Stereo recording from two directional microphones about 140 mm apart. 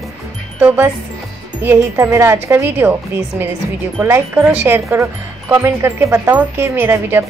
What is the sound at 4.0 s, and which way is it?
Speech, 15° right (ahead or behind).